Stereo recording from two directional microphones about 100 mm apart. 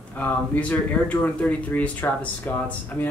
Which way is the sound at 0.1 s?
15° left (ahead or behind).